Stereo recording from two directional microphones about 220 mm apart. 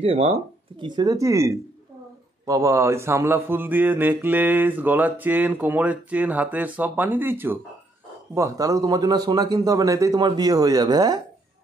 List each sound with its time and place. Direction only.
0.0 s speech: 25° right (ahead or behind)